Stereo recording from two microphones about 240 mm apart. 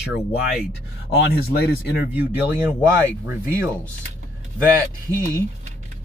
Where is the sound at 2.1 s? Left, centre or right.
Centre.